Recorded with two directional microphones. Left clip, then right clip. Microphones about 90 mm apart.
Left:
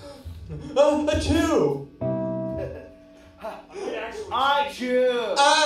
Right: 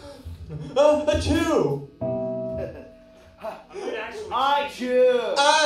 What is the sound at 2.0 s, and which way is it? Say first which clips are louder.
Music: right 1 dB; 35° left (ahead or behind).